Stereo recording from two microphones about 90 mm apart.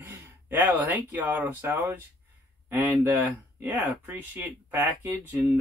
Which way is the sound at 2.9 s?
20° right (ahead or behind).